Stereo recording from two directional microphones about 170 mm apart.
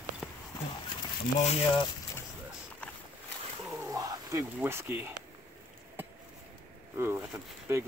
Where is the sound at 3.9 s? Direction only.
20° right (ahead or behind).